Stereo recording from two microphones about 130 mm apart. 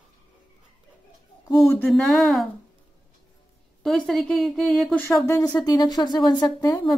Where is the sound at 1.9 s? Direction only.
Centre (ahead or behind).